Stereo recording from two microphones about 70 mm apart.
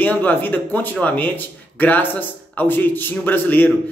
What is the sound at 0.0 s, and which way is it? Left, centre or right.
A man's voice, left.